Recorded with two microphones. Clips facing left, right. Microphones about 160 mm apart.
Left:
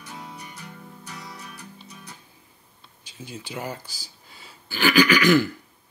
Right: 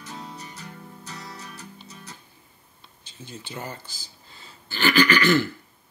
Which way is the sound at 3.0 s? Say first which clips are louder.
Left 3 dB; 10° left (ahead or behind).